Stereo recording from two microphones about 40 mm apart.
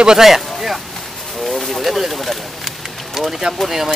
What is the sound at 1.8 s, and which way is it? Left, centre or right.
Speech, centre.